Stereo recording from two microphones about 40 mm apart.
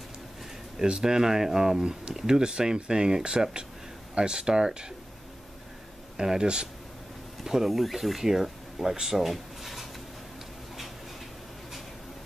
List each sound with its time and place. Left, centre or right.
0.8 s speech: right
6.1 s speech: centre
7.4 s speech: centre
9.0 s a sound: centre